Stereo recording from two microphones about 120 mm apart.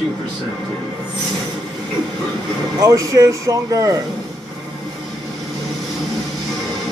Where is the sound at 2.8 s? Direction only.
30° right (ahead or behind).